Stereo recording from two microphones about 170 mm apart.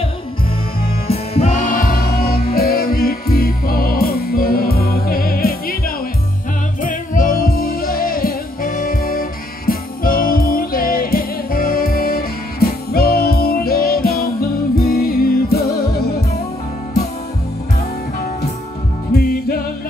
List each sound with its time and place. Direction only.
1.1 s music: 40° left (ahead or behind); by 5.8 s 60° left (ahead or behind)
6.8 s music: 50° left (ahead or behind)